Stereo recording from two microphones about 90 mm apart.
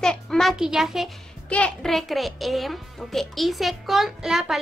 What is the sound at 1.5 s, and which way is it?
Speech, 15° left (ahead or behind).